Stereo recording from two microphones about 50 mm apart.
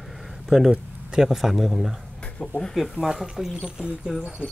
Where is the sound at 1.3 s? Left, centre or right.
Centre.